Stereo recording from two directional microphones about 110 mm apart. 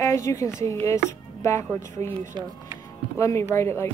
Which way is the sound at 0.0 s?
30° left (ahead or behind).